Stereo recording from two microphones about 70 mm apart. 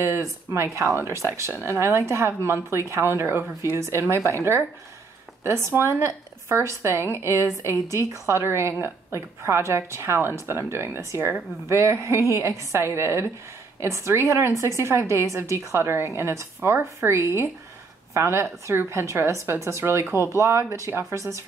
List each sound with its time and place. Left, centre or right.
0.0 s speech: right
5.4 s a woman's voice: right